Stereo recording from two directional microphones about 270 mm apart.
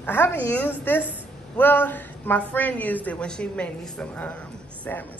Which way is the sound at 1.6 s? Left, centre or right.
Centre.